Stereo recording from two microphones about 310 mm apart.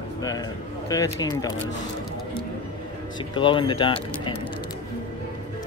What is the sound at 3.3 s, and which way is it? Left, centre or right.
Speech, centre.